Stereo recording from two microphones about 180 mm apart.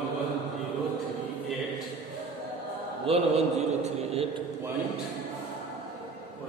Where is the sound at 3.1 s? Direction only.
35° right (ahead or behind).